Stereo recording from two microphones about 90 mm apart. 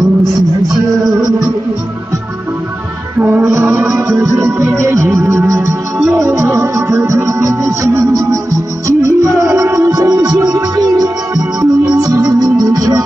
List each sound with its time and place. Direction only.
1.0 s music: centre (ahead or behind)
3.2 s music: 15° right (ahead or behind)
3.5 s music: 30° right (ahead or behind)